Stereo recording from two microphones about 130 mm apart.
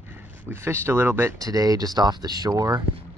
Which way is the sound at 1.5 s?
30° right (ahead or behind).